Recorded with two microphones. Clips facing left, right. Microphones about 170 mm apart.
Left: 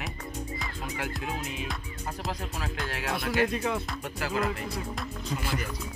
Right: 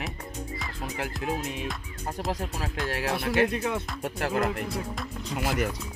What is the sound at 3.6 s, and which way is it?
Speech, 5° right (ahead or behind).